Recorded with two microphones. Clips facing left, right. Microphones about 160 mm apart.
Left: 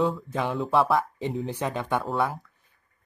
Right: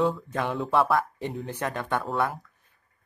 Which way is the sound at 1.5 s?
10° left (ahead or behind).